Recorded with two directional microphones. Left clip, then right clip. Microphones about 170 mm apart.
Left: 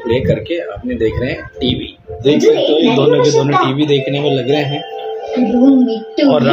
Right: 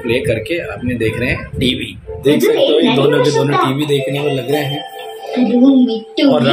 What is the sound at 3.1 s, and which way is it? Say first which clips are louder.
Speech: left 2 dB; 10° left (ahead or behind).